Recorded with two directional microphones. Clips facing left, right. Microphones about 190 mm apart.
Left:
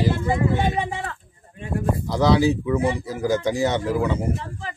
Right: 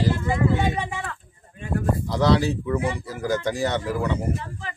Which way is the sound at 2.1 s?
10° left (ahead or behind).